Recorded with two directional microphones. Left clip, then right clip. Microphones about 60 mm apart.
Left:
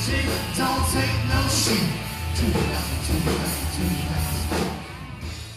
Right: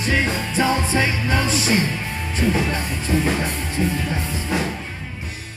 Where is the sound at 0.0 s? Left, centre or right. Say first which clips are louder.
Right 6 dB; right.